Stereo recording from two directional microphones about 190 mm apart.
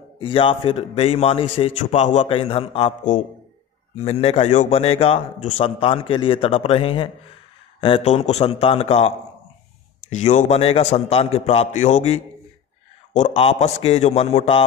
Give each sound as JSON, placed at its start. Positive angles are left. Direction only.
{"t": 0.2, "sound": "a man's voice", "side_deg": 25}
{"t": 10.1, "sound": "a man's voice", "side_deg": 40}